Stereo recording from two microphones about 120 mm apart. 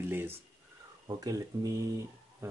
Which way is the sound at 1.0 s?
30° right (ahead or behind).